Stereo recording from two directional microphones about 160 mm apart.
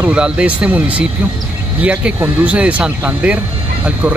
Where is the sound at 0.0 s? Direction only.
5° right (ahead or behind).